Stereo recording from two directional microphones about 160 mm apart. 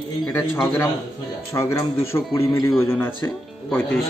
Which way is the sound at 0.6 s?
15° left (ahead or behind).